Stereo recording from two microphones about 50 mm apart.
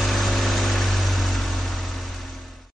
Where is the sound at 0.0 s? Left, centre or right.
Centre.